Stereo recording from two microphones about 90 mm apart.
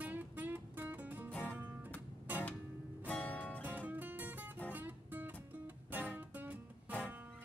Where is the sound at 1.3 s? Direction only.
15° left (ahead or behind).